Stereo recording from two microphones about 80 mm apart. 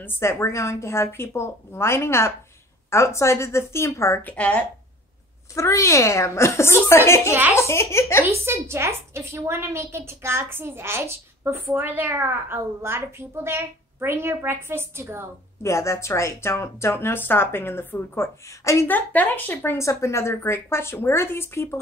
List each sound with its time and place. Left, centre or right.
0.0 s speech: left
4.2 s a woman's voice: centre
5.5 s speech: left
8.3 s a woman's voice: right
15.6 s speech: left
18.9 s speech: left